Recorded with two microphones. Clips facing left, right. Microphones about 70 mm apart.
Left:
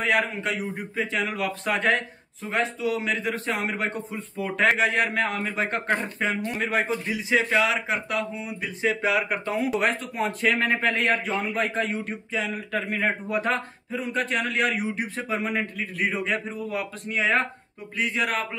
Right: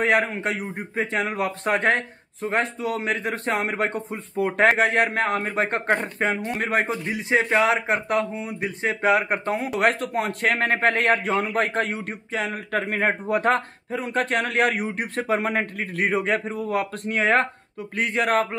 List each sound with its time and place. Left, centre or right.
0.0 s a man's voice: right
9.8 s a man's voice: right